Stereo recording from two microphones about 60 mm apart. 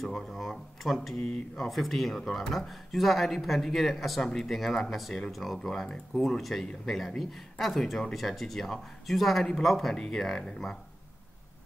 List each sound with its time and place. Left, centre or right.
0.4 s speech: centre
1.2 s speech: centre
1.7 s speech: centre